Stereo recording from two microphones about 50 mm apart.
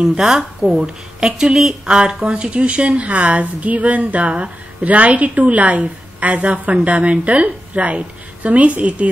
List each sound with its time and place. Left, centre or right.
0.0 s speech: centre